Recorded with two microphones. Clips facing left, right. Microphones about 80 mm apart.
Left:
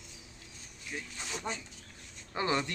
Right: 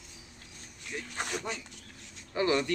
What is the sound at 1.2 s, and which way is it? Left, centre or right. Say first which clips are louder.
Speech: right 6 dB; right.